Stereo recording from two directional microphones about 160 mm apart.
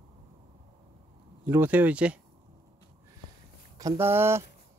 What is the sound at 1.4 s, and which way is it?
Speech, 10° right (ahead or behind).